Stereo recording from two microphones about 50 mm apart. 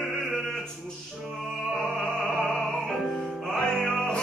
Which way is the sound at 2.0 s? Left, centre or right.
Centre.